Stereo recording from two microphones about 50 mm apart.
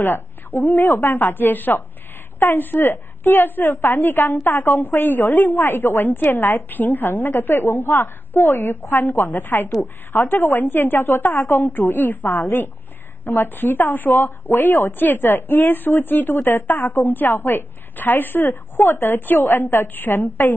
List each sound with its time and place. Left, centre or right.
0.0 s a woman's voice: left
0.6 s a woman's voice: left
0.8 s a woman's voice: left